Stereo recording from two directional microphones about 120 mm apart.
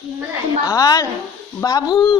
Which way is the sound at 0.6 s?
30° left (ahead or behind).